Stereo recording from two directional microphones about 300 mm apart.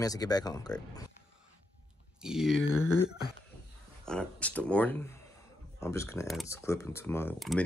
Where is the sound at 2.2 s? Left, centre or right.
Centre.